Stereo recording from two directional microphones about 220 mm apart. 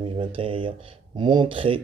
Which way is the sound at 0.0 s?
25° right (ahead or behind).